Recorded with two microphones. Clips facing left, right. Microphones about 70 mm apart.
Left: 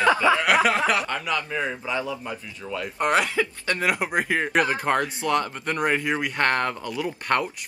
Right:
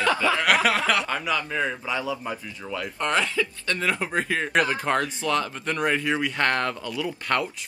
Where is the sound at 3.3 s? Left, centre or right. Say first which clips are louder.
Left 2 dB; left.